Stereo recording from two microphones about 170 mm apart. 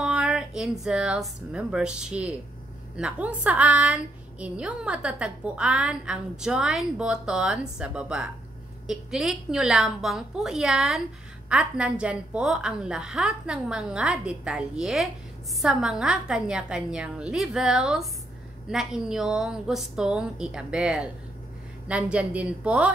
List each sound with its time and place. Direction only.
0.0 s a woman's voice: 5° right (ahead or behind)